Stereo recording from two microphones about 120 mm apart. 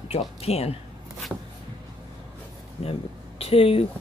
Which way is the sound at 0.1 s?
60° left (ahead or behind).